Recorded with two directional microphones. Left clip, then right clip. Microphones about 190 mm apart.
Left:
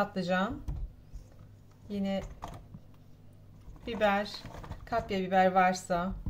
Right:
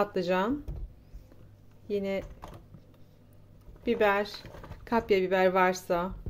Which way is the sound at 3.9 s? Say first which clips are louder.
Right 3 dB; 50° right (ahead or behind).